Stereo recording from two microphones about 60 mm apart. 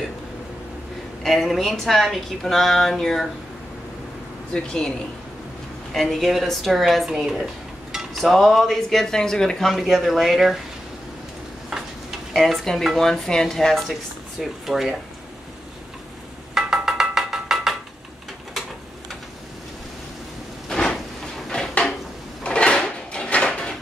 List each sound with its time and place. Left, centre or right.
1.2 s a woman's voice: centre
4.5 s speech: centre
5.9 s a woman's voice: centre
11.7 s tick-tock: centre
12.4 s a woman's voice: centre
16.5 s a sound: centre
20.6 s a sound: centre
22.4 s drawer open or close: centre